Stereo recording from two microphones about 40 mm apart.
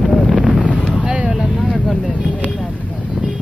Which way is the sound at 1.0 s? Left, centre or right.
Right.